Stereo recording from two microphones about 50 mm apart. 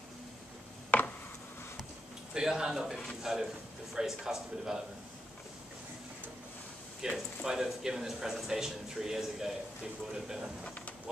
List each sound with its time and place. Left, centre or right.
2.3 s speech: centre
7.0 s speech: centre
10.6 s speech: left